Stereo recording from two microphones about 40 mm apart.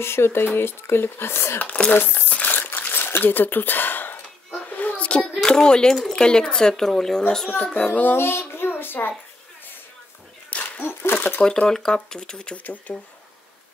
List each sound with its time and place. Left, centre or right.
0.0 s speech: left
1.6 s speech: left
2.0 s speech: left
2.4 s a sound: left
4.6 s a sound: left
5.0 s child singing: left
5.4 s a child's voice: left
7.5 s speech: left
8.2 s a child's voice: left
10.6 s a sound: left
11.6 s speech: centre
12.6 s speech: left